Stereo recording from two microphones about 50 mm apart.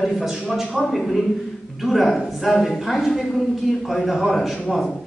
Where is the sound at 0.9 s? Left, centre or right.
Centre.